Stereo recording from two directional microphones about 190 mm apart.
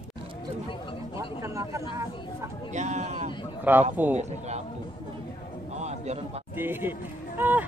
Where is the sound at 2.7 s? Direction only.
40° right (ahead or behind).